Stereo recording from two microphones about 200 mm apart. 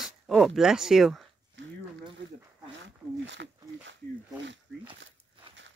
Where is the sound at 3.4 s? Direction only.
60° right (ahead or behind).